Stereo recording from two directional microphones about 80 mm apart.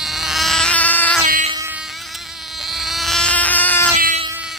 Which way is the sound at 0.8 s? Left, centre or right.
Centre.